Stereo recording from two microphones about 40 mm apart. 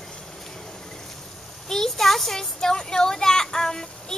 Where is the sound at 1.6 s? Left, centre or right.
Centre.